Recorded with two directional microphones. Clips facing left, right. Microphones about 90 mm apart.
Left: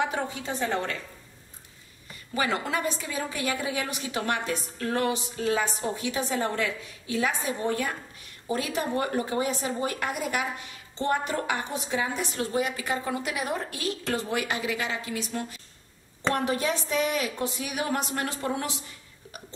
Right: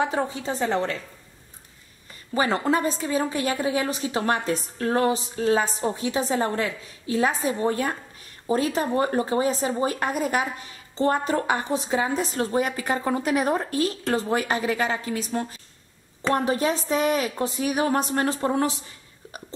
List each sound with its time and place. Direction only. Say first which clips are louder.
0.0 s a woman's voice: right 4 dB; 30° right (ahead or behind)
2.3 s a woman's voice: right 5 dB; 35° right (ahead or behind)